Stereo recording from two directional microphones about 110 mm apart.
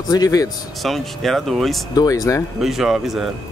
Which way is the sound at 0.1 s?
35° left (ahead or behind).